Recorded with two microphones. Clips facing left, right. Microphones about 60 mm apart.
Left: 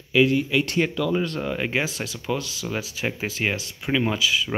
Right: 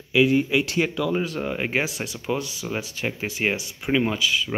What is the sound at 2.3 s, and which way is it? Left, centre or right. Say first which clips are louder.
Speech: right 1 dB; centre.